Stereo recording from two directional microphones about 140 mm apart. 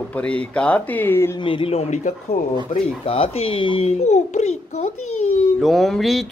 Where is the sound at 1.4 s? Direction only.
40° left (ahead or behind).